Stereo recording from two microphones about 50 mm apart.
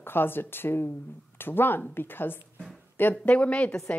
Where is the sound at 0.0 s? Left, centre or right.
Left.